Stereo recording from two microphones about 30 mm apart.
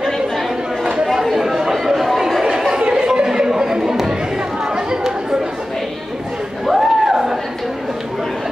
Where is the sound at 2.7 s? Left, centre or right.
Right.